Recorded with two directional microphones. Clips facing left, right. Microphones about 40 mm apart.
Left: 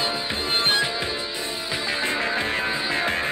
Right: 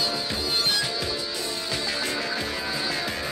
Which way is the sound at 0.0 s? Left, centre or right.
Left.